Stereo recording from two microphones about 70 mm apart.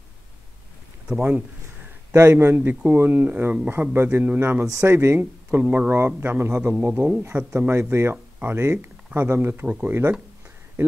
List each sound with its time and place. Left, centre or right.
1.0 s speech: centre
2.1 s a man's voice: right